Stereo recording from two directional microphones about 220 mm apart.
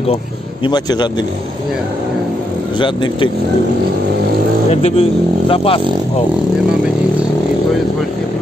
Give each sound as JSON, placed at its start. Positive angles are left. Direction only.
{"t": 0.7, "sound": "speech", "side_deg": 20}
{"t": 2.8, "sound": "speech", "side_deg": 20}
{"t": 4.6, "sound": "speech", "side_deg": 30}